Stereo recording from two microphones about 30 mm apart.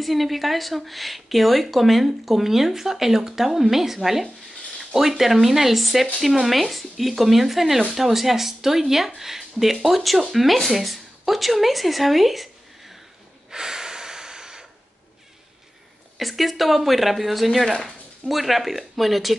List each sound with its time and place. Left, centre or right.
0.0 s speech: centre
13.5 s snort: centre
16.2 s speech: centre